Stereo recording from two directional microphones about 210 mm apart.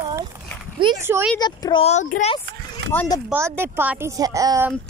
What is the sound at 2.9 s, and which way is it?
Speech, 10° left (ahead or behind).